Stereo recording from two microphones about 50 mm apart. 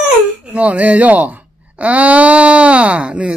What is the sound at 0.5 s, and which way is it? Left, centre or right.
Speech, right.